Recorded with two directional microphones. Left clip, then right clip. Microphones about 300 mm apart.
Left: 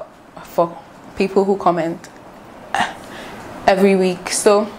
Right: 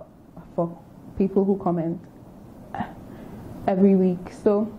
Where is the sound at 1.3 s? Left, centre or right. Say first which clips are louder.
Left 7 dB; left.